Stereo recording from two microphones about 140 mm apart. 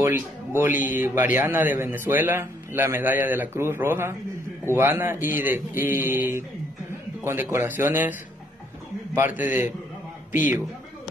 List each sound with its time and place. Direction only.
0.5 s speech: 15° right (ahead or behind)
9.1 s a man's voice: 65° left (ahead or behind)
9.4 s speech: 15° right (ahead or behind)